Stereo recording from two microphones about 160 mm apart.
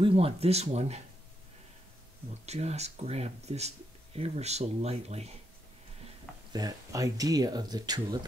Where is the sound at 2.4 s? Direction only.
45° right (ahead or behind).